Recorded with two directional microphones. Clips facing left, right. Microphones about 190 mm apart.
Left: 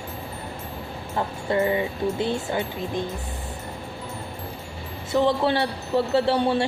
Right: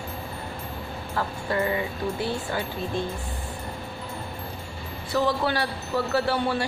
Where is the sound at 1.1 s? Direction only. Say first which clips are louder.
Left 3 dB; 25° left (ahead or behind).